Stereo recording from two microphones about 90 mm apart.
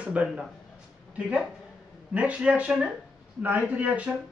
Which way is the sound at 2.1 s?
15° right (ahead or behind).